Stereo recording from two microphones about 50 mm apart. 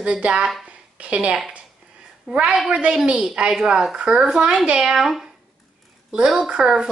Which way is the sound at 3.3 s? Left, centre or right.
Centre.